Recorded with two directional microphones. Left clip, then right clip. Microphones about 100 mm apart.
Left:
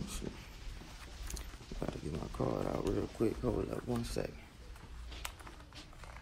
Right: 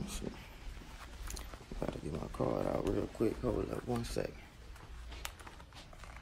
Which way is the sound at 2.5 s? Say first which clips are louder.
Right 2 dB; 5° right (ahead or behind).